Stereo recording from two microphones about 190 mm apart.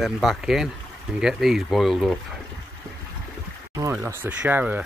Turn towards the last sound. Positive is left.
turn(degrees=-10)  # may be behind; listen again after turning